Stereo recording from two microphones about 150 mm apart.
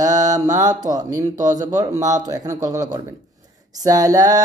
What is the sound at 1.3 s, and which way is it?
Mantra, 55° right (ahead or behind).